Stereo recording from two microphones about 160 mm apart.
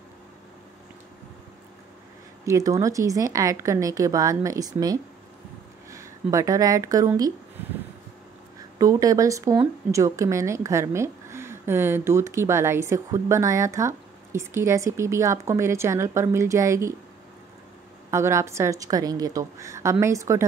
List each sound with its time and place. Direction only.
2.4 s speech: 20° right (ahead or behind)
7.6 s a sound: 15° right (ahead or behind)
8.7 s speech: 20° right (ahead or behind)
18.1 s speech: 15° right (ahead or behind)